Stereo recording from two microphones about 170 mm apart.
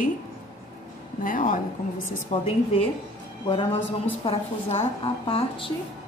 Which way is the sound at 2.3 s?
35° left (ahead or behind).